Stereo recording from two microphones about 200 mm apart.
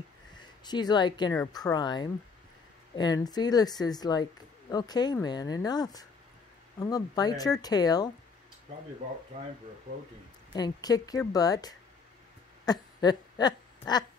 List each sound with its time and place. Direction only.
0.4 s speech: 20° left (ahead or behind)
10.5 s speech: 20° left (ahead or behind)
12.6 s a sound: 20° left (ahead or behind)